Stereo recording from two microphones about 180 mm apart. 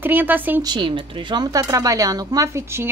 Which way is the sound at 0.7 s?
25° right (ahead or behind).